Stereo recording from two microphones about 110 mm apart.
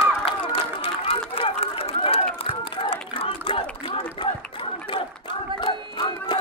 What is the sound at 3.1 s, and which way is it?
Crowd, 55° left (ahead or behind).